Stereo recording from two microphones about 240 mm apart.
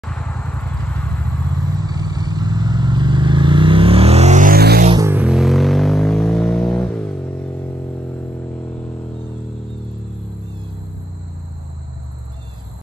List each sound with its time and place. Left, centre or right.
0.1 s vehicle: centre
1.8 s vehicle: centre; by 4.8 s right
5.0 s a sound: centre